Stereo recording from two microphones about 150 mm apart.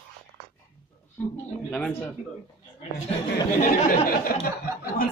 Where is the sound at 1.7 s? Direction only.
10° left (ahead or behind).